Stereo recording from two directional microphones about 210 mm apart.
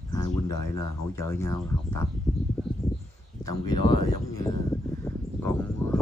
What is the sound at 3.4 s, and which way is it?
Speech, 15° left (ahead or behind).